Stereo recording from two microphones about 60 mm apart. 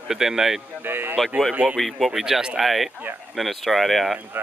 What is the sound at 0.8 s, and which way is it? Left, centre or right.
Speech, right.